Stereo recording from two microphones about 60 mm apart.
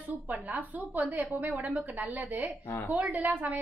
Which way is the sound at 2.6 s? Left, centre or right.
Left.